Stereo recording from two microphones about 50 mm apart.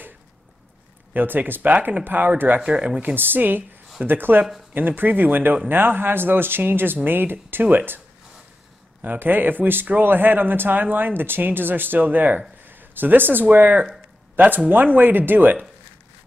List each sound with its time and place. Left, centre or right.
1.1 s speech: right
2.6 s speech: right
3.2 s speech: right
9.0 s speech: right